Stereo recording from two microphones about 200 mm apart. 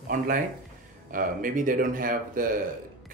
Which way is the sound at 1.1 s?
40° right (ahead or behind).